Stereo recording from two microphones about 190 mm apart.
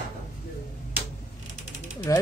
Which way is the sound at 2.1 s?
15° left (ahead or behind).